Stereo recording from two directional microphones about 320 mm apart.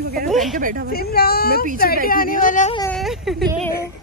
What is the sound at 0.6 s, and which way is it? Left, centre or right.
Speech, right.